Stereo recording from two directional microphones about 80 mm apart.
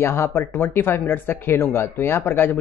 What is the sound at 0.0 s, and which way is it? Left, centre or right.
Speech, left.